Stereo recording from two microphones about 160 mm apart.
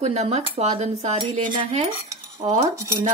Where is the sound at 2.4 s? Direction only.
40° right (ahead or behind).